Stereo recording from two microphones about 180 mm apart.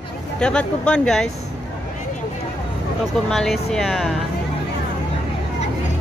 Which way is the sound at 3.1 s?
Centre (ahead or behind).